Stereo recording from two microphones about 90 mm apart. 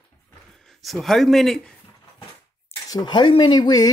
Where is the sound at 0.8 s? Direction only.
Centre (ahead or behind).